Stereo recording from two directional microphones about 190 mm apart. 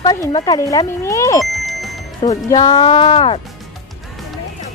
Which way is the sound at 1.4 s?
Centre (ahead or behind).